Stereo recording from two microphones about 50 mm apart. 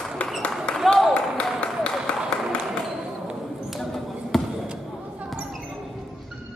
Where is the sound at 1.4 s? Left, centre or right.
Left.